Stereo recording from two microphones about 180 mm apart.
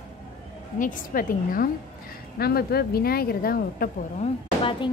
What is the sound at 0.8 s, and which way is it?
A woman's voice, 50° left (ahead or behind).